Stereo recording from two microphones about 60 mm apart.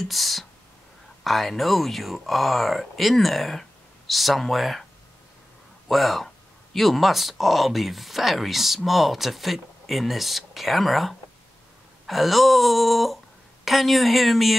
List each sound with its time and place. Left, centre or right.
0.0 s speech: centre
5.9 s speech: centre